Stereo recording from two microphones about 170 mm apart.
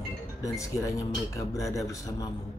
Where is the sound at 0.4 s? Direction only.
15° left (ahead or behind).